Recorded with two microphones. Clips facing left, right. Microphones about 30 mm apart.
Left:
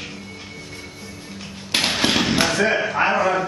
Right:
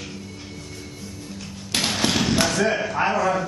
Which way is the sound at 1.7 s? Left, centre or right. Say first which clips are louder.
Left 3 dB; left.